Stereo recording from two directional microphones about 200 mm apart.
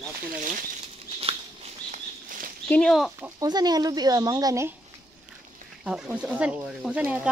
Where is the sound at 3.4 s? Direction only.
20° right (ahead or behind).